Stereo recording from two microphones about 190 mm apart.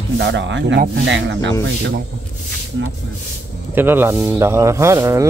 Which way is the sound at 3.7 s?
10° right (ahead or behind).